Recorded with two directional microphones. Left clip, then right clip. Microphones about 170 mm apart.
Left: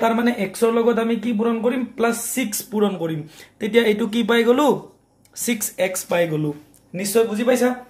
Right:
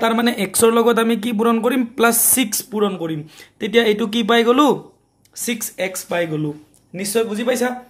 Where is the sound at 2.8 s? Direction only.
15° right (ahead or behind); by 6.5 s centre (ahead or behind).